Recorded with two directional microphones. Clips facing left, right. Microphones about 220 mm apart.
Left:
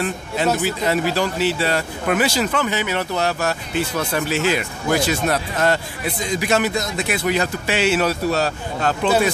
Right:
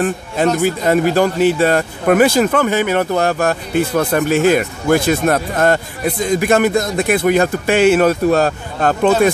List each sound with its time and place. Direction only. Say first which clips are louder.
0.6 s speech: right 6 dB; 50° right (ahead or behind)